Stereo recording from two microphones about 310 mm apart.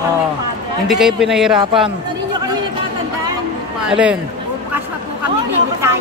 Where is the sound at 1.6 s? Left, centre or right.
Centre.